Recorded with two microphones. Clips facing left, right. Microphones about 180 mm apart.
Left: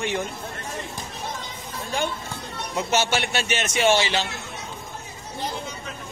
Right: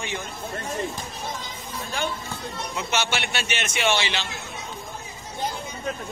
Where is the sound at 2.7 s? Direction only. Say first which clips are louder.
Left 5 dB; 40° left (ahead or behind).